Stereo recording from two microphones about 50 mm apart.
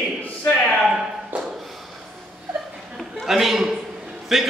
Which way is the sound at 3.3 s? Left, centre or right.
Centre.